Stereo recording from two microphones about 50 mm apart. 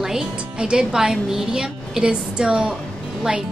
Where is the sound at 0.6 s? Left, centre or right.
Centre.